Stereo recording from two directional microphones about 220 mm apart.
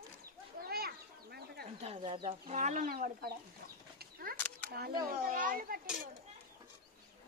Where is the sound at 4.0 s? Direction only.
40° right (ahead or behind).